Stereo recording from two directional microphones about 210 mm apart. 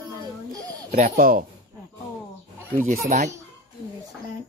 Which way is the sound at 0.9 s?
40° right (ahead or behind).